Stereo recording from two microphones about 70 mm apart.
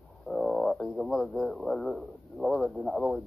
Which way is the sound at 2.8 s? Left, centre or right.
Right.